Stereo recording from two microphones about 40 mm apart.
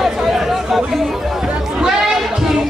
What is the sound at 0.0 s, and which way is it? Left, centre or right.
Chatter, centre.